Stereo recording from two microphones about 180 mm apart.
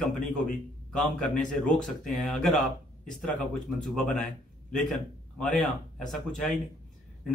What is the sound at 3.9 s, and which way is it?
A man's voice, centre (ahead or behind).